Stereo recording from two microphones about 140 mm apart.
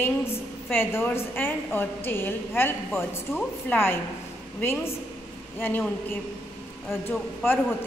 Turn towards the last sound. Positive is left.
turn(degrees=15)  # may be behind; listen again after turning